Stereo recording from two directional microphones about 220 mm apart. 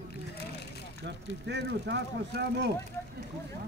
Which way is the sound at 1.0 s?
50° right (ahead or behind).